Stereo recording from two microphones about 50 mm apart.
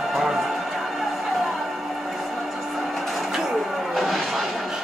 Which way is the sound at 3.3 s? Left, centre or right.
Centre.